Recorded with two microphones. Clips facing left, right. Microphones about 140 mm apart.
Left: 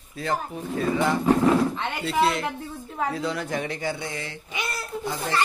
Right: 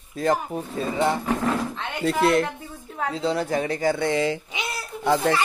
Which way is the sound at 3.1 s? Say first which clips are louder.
Right 4 dB; 30° right (ahead or behind).